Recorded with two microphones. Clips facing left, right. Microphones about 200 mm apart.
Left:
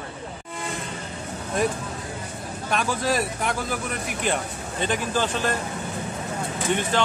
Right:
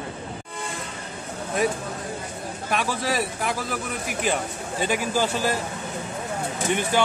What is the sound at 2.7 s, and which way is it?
Speech, centre (ahead or behind).